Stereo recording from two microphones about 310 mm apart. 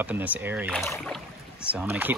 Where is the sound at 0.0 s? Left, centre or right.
Centre.